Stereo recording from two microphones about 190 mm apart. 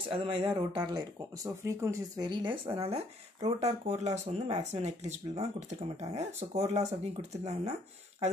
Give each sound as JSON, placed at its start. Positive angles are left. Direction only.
{"t": 0.1, "sound": "speech", "side_deg": -30}